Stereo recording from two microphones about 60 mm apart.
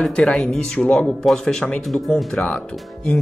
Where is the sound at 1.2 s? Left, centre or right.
Centre.